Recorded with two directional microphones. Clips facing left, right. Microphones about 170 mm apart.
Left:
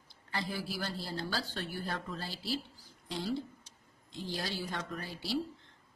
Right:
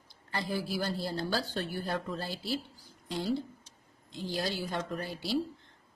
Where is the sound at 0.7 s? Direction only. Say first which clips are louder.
Right 5 dB; 45° right (ahead or behind).